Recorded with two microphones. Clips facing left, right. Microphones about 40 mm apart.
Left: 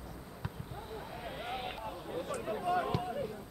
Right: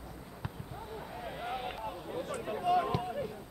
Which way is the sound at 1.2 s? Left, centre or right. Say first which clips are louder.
Right 2 dB; left.